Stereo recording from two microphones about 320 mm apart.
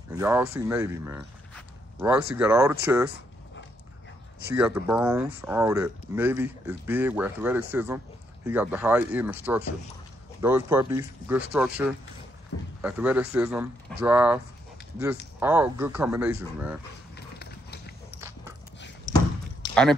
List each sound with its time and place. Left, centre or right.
0.1 s speech: centre
4.6 s speech: centre
12.5 s a man's voice: left
12.8 s speech: centre
17.1 s biting: left
19.6 s a sound: centre